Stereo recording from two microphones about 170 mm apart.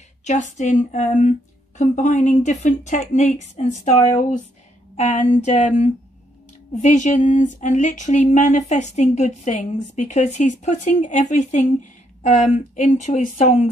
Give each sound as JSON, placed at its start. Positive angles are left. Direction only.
{"t": 0.2, "sound": "speech", "side_deg": 45}